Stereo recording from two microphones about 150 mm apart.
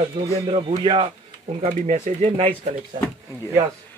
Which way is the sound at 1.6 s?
50° right (ahead or behind).